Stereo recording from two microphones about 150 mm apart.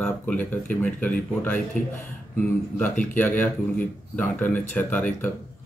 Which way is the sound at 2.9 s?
60° left (ahead or behind).